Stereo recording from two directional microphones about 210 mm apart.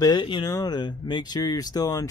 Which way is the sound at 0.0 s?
20° left (ahead or behind).